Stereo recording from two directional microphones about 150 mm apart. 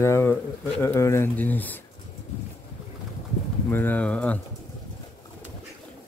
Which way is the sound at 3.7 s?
10° left (ahead or behind).